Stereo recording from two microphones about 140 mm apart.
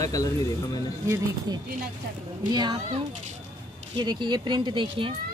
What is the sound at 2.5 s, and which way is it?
Speech, 30° right (ahead or behind).